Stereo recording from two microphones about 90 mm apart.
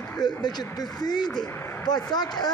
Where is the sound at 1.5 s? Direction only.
30° left (ahead or behind).